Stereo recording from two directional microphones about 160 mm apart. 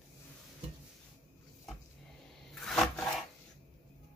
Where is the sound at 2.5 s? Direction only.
5° left (ahead or behind).